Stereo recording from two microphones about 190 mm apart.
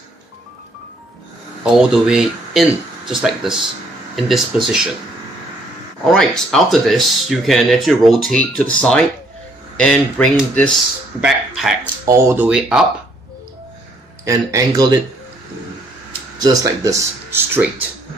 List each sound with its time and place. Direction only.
1.6 s speech: 5° right (ahead or behind)
6.1 s speech: centre (ahead or behind)
12.1 s speech: 15° right (ahead or behind)
12.4 s speech: 5° right (ahead or behind)
14.2 s speech: 15° right (ahead or behind)
16.3 s speech: 20° right (ahead or behind)